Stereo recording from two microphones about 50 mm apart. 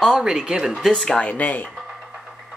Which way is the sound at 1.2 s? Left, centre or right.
Left.